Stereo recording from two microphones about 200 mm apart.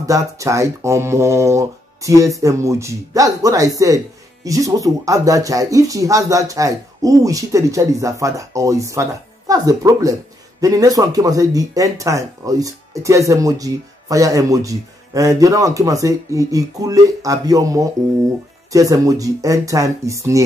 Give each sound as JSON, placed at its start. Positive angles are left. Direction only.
{"t": 0.0, "sound": "speech", "side_deg": -15}